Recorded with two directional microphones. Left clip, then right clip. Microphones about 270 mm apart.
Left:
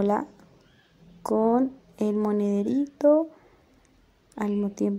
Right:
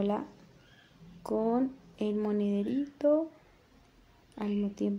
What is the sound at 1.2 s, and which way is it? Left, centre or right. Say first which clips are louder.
Speech: left 7 dB; centre.